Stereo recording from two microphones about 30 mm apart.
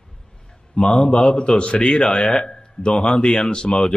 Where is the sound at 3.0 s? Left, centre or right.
Left.